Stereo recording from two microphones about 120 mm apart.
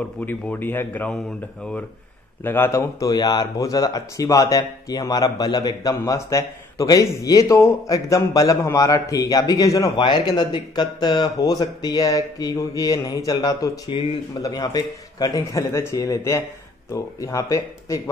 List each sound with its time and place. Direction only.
0.2 s speech: 15° left (ahead or behind)
2.4 s speech: 20° left (ahead or behind)
9.9 s speech: 40° left (ahead or behind)
13.9 s speech: 50° left (ahead or behind)
14.4 s speech: 30° left (ahead or behind)